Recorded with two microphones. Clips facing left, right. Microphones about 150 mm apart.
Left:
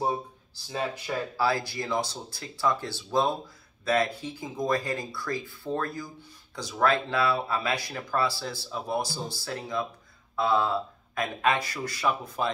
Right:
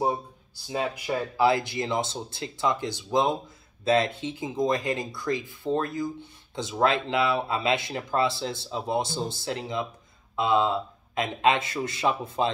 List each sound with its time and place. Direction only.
0.7 s speech: 15° right (ahead or behind)